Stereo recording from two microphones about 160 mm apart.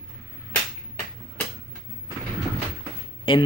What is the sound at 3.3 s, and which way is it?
Speech, 30° left (ahead or behind).